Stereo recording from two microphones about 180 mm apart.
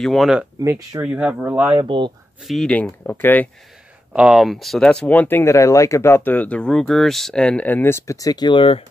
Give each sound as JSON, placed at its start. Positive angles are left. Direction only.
{"t": 0.0, "sound": "speech", "side_deg": 0}
{"t": 0.6, "sound": "speech", "side_deg": -20}
{"t": 2.4, "sound": "speech", "side_deg": 0}
{"t": 4.1, "sound": "speech", "side_deg": -5}